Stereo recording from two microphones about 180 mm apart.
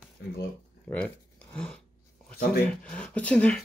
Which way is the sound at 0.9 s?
5° left (ahead or behind).